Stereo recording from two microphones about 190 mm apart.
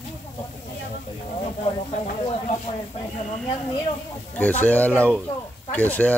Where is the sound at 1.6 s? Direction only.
30° left (ahead or behind).